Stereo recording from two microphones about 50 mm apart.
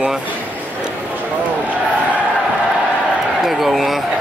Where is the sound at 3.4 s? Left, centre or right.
Centre.